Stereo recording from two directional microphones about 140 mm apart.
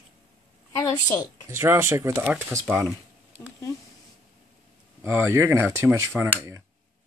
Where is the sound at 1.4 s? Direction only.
20° right (ahead or behind).